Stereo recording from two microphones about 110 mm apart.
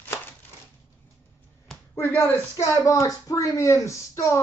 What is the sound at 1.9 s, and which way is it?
Speech, 25° left (ahead or behind).